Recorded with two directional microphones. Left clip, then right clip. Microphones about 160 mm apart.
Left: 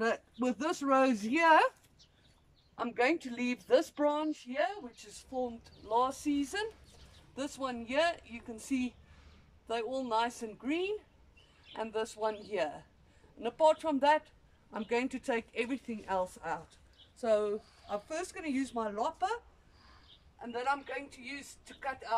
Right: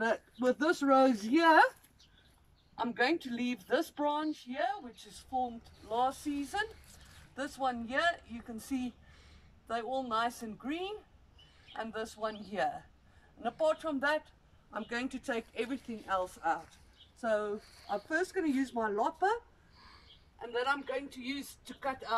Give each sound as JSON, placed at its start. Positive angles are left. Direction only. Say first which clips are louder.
{"t": 0.0, "sound": "speech", "louder": "right 1 dB", "side_deg": 15}
{"t": 2.8, "sound": "speech", "louder": "left 1 dB", "side_deg": 10}
{"t": 19.8, "sound": "a man's voice", "louder": "right 3 dB", "side_deg": 0}